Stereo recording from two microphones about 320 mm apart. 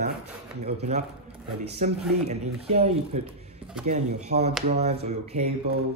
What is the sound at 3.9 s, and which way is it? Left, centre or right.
A man's voice, centre.